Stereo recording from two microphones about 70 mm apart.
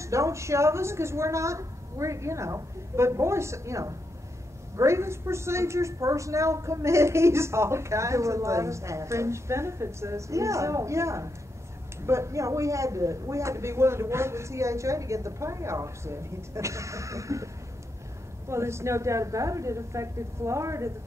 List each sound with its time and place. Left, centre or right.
0.0 s a woman's voice: right
18.5 s a woman's voice: right